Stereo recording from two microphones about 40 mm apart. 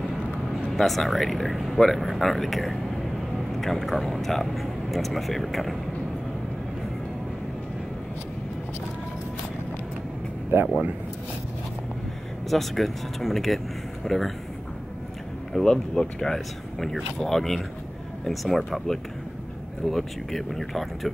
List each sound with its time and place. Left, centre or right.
0.7 s speech: centre
10.5 s speech: right
12.4 s speech: centre
15.6 s speech: centre
16.3 s speech: centre
19.9 s speech: centre